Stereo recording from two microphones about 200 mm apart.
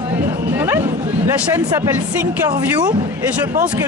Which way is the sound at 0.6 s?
10° right (ahead or behind).